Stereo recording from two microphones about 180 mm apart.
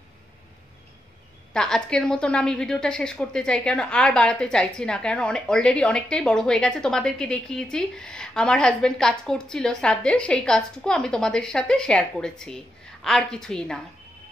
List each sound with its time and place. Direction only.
1.5 s a woman's voice: 5° left (ahead or behind)